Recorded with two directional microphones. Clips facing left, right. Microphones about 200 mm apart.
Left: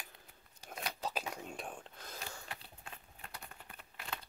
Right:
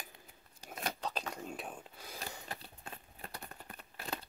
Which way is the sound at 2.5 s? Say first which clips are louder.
Right 3 dB; 35° right (ahead or behind).